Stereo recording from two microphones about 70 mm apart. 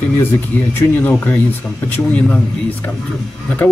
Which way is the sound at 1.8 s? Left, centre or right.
Left.